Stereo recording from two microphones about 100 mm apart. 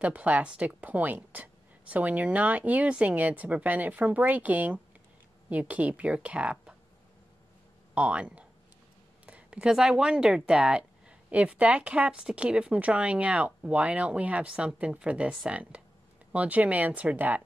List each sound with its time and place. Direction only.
0.0 s speech: 15° right (ahead or behind)
7.9 s speech: 10° right (ahead or behind)